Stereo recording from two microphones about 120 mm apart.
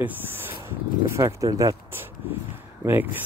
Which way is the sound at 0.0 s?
15° right (ahead or behind).